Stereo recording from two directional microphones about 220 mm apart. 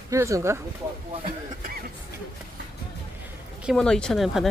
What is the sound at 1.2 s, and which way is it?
Speech, 40° right (ahead or behind).